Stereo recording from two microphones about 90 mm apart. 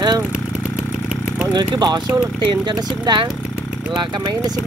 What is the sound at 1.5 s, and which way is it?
Speech, 55° right (ahead or behind).